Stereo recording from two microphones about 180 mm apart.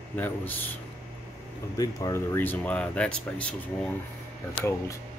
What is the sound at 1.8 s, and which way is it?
Speech, 20° left (ahead or behind).